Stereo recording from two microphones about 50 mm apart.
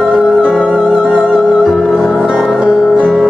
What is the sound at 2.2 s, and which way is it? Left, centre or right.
Music, centre.